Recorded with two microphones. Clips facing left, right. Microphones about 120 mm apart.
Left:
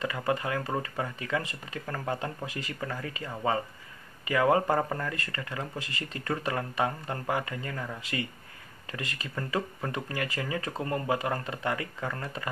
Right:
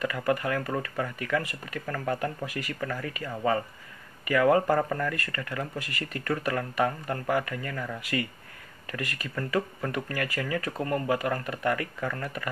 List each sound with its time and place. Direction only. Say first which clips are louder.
0.0 s speech: right 2 dB; 25° left (ahead or behind)